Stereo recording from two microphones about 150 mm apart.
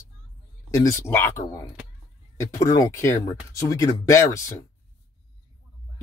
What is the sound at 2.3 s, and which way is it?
Speech, 20° left (ahead or behind).